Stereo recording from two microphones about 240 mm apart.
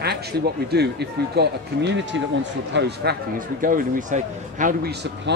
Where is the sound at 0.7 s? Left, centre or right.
Right.